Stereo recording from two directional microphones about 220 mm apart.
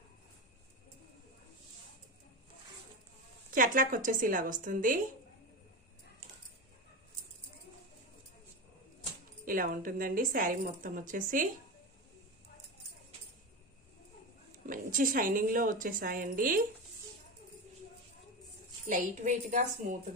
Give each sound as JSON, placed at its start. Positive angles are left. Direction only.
{"t": 3.5, "sound": "a woman's voice", "side_deg": -40}
{"t": 9.4, "sound": "a woman's voice", "side_deg": -40}
{"t": 14.7, "sound": "a woman's voice", "side_deg": -40}
{"t": 18.9, "sound": "a woman's voice", "side_deg": -35}